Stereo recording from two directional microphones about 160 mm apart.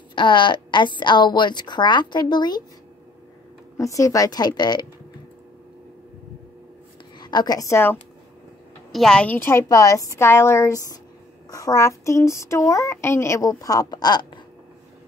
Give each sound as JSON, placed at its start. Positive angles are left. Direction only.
{"t": 0.1, "sound": "a woman's voice", "side_deg": 30}
{"t": 3.7, "sound": "a woman's voice", "side_deg": 20}
{"t": 7.2, "sound": "a woman's voice", "side_deg": 25}
{"t": 8.9, "sound": "a woman's voice", "side_deg": 5}